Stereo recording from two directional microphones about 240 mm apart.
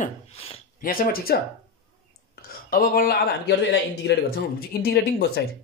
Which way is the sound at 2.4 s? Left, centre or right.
Left.